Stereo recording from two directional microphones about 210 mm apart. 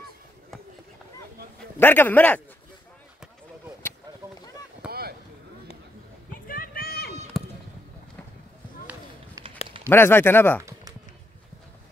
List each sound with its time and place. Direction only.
1.8 s speech: 10° left (ahead or behind)
4.8 s boat: 50° right (ahead or behind)
6.4 s a sound: 40° left (ahead or behind)
9.8 s speech: 10° left (ahead or behind)